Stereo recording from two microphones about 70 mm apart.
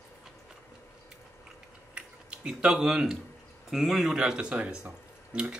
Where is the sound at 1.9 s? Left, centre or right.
Centre.